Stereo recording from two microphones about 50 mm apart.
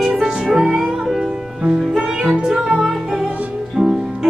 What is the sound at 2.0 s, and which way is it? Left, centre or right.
Music, centre.